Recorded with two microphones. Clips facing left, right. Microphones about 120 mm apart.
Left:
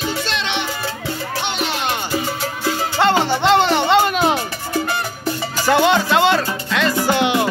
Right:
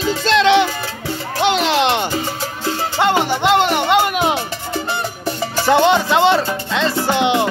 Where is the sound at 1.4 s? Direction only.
90° right.